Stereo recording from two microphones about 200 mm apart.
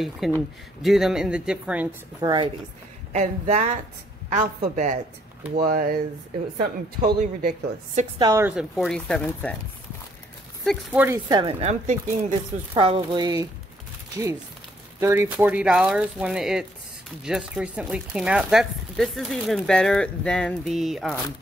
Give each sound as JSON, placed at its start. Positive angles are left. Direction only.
{"t": 0.0, "sound": "speech", "side_deg": 0}
{"t": 2.1, "sound": "speech", "side_deg": -20}
{"t": 3.1, "sound": "a woman's voice", "side_deg": -35}
{"t": 8.2, "sound": "speech", "side_deg": -15}
{"t": 10.6, "sound": "speech", "side_deg": 0}
{"t": 11.2, "sound": "speech", "side_deg": -20}
{"t": 11.6, "sound": "a woman's voice", "side_deg": -35}
{"t": 12.7, "sound": "speech", "side_deg": -25}
{"t": 15.0, "sound": "speech", "side_deg": -10}